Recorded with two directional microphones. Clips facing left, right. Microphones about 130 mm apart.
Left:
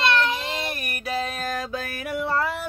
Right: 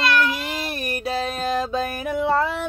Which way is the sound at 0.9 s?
30° right (ahead or behind).